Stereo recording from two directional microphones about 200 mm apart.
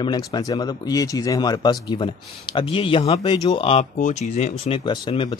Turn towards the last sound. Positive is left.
turn(degrees=25)  # may be behind; listen again after turning